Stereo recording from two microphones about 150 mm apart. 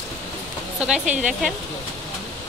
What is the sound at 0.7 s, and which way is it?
Speech, 5° right (ahead or behind).